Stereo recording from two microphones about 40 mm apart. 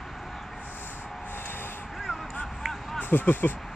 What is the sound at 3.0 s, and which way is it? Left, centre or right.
Speech, left.